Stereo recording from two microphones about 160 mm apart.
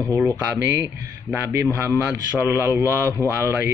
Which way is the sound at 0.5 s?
10° right (ahead or behind).